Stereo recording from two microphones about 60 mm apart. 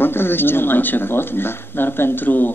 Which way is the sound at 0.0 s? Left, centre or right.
Left.